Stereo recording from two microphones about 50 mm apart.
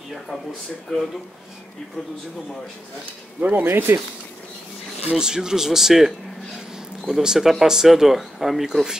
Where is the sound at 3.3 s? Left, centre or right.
Right.